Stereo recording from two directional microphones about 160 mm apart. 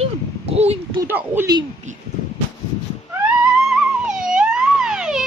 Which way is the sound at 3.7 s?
5° right (ahead or behind).